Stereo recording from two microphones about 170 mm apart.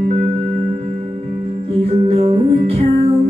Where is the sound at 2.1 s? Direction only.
35° right (ahead or behind).